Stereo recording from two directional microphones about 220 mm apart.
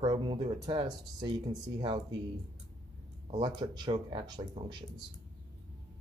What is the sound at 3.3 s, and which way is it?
Speech, 20° right (ahead or behind).